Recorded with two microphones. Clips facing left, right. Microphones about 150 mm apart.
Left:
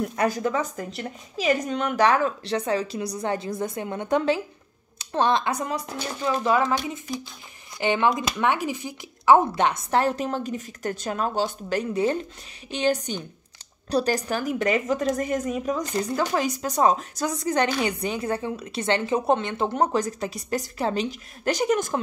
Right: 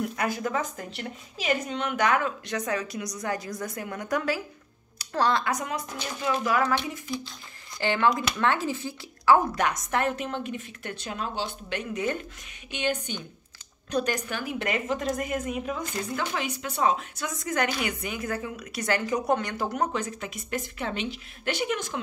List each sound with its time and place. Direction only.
0.1 s a woman's voice: 35° left (ahead or behind)